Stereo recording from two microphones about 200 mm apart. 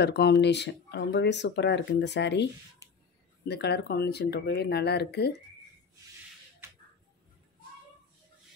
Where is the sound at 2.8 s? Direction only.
15° left (ahead or behind).